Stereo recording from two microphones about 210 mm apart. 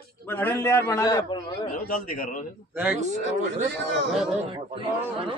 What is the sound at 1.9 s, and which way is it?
Speech, 40° left (ahead or behind).